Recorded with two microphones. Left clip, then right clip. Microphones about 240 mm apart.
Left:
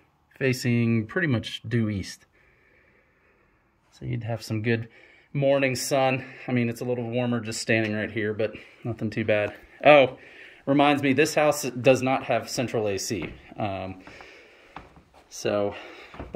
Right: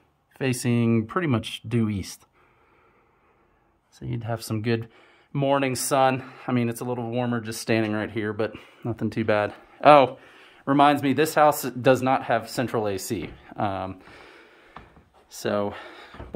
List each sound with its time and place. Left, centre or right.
0.3 s speech: centre
4.0 s speech: centre
8.8 s speech: right
9.9 s a sound: centre
10.9 s speech: centre
11.4 s speech: right
13.6 s speech: centre
14.1 s a sound: right
15.4 s a sound: centre